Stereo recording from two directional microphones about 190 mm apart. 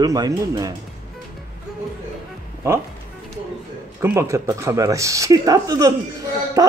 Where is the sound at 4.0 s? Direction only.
15° right (ahead or behind).